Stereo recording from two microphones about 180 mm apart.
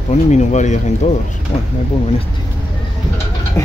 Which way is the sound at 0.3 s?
40° left (ahead or behind).